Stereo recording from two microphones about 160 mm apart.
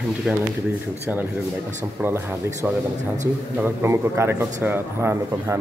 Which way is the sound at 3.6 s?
15° right (ahead or behind).